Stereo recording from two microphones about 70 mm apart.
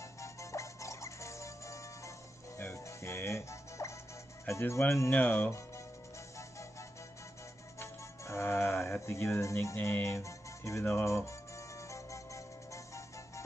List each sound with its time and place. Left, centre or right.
0.2 s music: left
4.5 s speech: left
5.1 s speech: left
7.8 s music: left
9.0 s speech: left
10.0 s music: left